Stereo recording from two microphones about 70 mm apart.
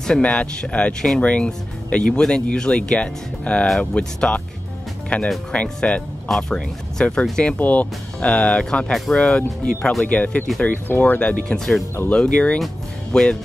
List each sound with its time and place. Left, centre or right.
0.2 s speech: centre
11.1 s speech: centre
12.1 s speech: centre
12.5 s speech: centre